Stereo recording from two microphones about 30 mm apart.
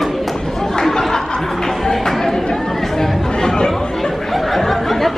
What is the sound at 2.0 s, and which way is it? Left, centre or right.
Chatter, centre.